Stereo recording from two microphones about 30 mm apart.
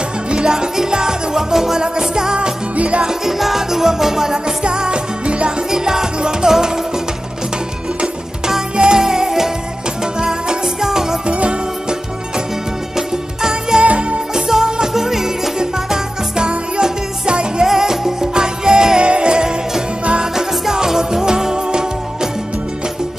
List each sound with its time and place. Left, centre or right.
0.3 s music: right
2.8 s music: right
3.1 s music: centre
4.6 s music: right
5.7 s music: centre
8.7 s music: right
9.0 s music: centre
10.5 s music: centre
11.2 s music: right
12.9 s music: centre
13.8 s music: right
14.3 s music: centre
17.6 s music: centre; by 19.5 s right
20.3 s music: centre